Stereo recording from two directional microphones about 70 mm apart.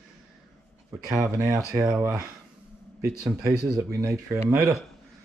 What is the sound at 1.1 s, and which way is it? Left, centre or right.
Speech, right.